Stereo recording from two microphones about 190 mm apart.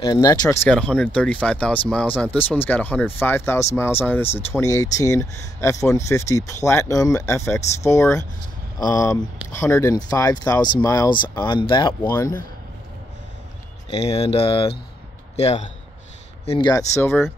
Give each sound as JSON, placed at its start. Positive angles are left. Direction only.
{"t": 0.0, "sound": "speech", "side_deg": 20}
{"t": 0.7, "sound": "speech", "side_deg": 5}
{"t": 13.8, "sound": "speech", "side_deg": 30}
{"t": 16.4, "sound": "speech", "side_deg": 25}